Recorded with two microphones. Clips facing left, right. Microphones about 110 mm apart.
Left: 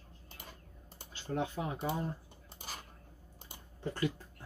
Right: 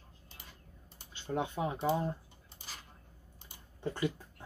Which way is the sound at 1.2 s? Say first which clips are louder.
Right 2 dB; 20° right (ahead or behind).